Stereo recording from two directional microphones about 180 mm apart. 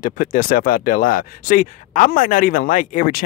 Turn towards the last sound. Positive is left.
turn(degrees=50)  # may be behind; listen again after turning